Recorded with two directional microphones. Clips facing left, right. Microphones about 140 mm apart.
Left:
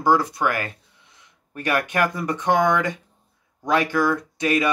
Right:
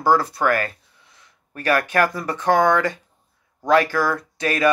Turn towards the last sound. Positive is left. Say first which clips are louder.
# even
turn(degrees=20)  # may be behind; listen again after turning